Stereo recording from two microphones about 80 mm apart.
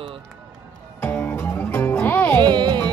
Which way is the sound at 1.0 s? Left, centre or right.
Left.